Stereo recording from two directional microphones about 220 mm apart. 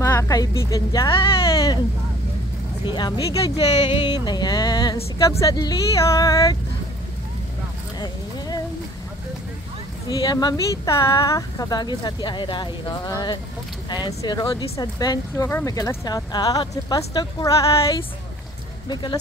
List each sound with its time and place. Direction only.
0.0 s a woman's voice: 15° left (ahead or behind)
2.8 s speech: 20° left (ahead or behind)
10.0 s speech: 20° left (ahead or behind)